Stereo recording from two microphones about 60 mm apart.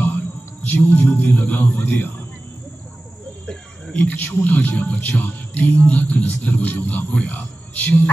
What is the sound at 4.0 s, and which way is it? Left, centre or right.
Speech, left.